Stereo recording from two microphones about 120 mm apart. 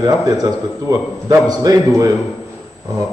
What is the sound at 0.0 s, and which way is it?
A man's voice, 30° right (ahead or behind).